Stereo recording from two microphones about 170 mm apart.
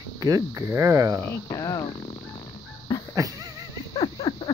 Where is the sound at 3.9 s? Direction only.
25° left (ahead or behind).